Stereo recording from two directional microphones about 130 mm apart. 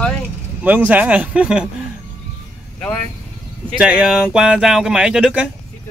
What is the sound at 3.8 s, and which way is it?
Speech, 10° right (ahead or behind).